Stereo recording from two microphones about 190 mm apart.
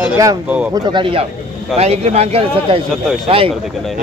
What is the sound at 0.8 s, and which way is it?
Speech, 25° right (ahead or behind).